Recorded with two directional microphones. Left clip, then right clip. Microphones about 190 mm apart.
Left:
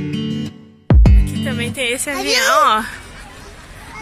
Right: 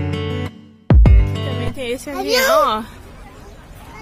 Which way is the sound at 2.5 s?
Centre (ahead or behind).